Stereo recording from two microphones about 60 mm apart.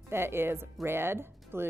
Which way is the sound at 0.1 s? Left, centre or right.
Right.